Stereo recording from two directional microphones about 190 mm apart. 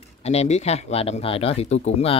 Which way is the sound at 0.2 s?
35° left (ahead or behind).